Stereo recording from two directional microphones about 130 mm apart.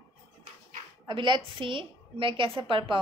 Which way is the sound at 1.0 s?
35° right (ahead or behind).